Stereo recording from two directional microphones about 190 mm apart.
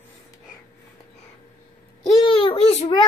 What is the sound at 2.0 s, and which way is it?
A child's voice, 25° left (ahead or behind).